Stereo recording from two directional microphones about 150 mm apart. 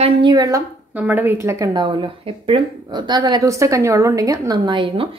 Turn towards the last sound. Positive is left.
turn(degrees=-35)  # may be behind; listen again after turning